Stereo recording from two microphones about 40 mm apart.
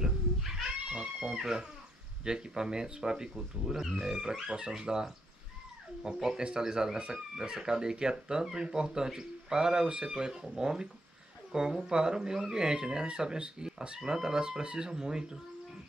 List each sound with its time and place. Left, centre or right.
0.7 s cat: right
1.3 s speech: centre